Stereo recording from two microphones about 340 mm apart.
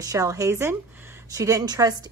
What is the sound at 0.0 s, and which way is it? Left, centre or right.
Speech, centre.